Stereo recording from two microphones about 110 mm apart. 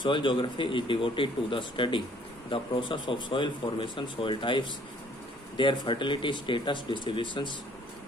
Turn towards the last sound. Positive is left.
turn(degrees=45)  # may be behind; listen again after turning